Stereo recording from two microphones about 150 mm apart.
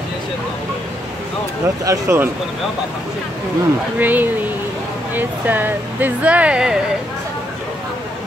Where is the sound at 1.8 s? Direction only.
20° right (ahead or behind).